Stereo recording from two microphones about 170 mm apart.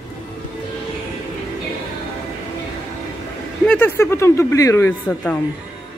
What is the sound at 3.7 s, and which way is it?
Speech, 10° left (ahead or behind).